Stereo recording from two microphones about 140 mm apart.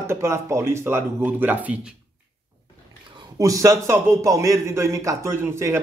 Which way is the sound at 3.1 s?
25° right (ahead or behind).